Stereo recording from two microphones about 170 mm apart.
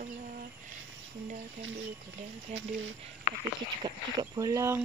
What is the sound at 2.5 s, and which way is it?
Speech, 40° right (ahead or behind).